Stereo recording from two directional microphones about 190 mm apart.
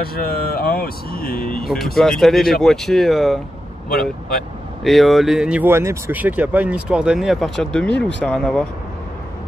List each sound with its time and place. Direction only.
0.0 s speech: 55° left (ahead or behind)
2.0 s speech: centre (ahead or behind)
4.8 s speech: centre (ahead or behind)